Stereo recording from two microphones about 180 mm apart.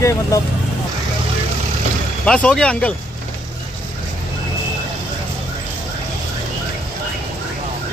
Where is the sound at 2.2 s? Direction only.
5° left (ahead or behind).